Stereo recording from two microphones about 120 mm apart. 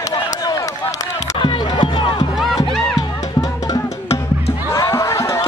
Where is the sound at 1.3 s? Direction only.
40° left (ahead or behind).